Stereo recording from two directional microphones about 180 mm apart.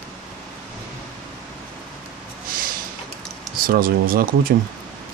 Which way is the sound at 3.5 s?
55° right (ahead or behind).